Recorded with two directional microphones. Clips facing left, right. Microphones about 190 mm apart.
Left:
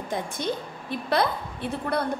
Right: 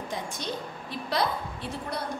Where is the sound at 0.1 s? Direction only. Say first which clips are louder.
Left 7 dB; 55° left (ahead or behind).